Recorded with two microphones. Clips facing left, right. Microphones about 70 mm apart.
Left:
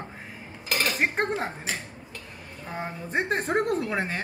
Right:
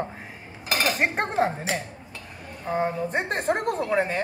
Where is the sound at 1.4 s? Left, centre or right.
Right.